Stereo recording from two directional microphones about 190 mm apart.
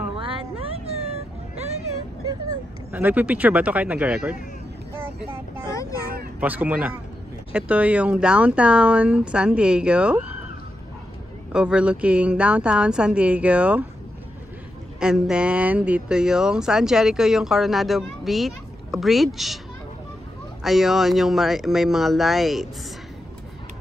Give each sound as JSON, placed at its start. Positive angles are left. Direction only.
{"t": 0.1, "sound": "cat", "side_deg": -25}
{"t": 2.9, "sound": "speech", "side_deg": -10}
{"t": 5.7, "sound": "speech", "side_deg": 15}
{"t": 6.4, "sound": "speech", "side_deg": -10}
{"t": 11.5, "sound": "speech", "side_deg": -5}
{"t": 15.0, "sound": "speech", "side_deg": -5}
{"t": 20.6, "sound": "speech", "side_deg": 0}